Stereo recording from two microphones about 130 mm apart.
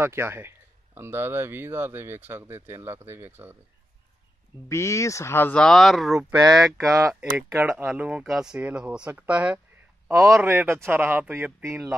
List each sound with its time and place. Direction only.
0.0 s speech: 20° right (ahead or behind)
4.6 s speech: 20° left (ahead or behind); by 6.2 s centre (ahead or behind)
6.8 s speech: 25° right (ahead or behind)
7.2 s speech: 10° right (ahead or behind)
10.0 s a man's voice: 25° right (ahead or behind)